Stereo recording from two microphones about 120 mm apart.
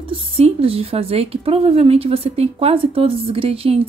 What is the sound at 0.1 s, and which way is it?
A woman's voice, 55° right (ahead or behind).